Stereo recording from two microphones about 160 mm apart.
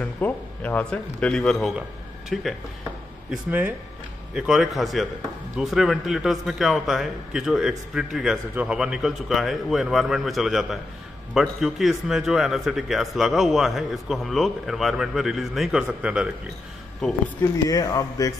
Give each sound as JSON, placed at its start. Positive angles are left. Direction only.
{"t": 0.0, "sound": "a man's voice", "side_deg": 10}
{"t": 17.0, "sound": "speech", "side_deg": 5}
{"t": 17.4, "sound": "speech", "side_deg": 20}